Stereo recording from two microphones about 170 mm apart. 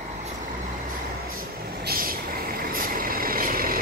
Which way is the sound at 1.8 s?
60° right (ahead or behind).